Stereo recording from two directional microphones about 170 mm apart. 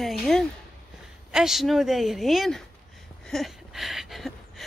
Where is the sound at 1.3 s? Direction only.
Centre (ahead or behind).